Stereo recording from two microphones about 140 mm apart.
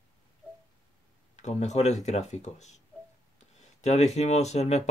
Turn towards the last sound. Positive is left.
turn(degrees=50)  # may be behind; listen again after turning